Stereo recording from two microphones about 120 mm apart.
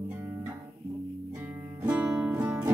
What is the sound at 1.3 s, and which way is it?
Music, 20° right (ahead or behind).